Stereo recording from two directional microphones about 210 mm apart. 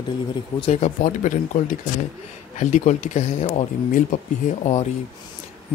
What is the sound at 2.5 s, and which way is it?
Speech, 35° left (ahead or behind).